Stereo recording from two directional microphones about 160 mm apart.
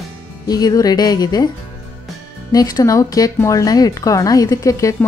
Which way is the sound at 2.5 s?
25° left (ahead or behind).